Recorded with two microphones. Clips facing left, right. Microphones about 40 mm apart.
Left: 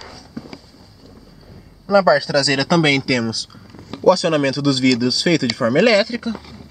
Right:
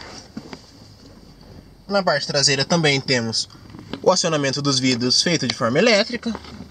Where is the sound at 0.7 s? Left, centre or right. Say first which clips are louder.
Left 1 dB; centre.